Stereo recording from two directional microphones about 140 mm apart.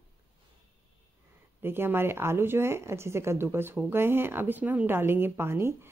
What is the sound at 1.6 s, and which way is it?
Speech, 15° right (ahead or behind).